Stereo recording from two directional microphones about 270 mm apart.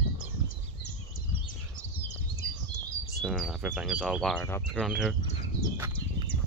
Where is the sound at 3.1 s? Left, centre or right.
Centre.